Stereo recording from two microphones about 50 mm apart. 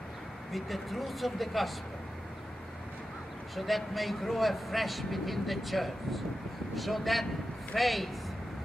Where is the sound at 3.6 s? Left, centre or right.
Centre.